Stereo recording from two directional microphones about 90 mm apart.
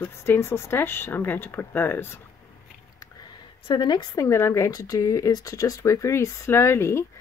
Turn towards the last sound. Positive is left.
turn(degrees=30)  # may be behind; listen again after turning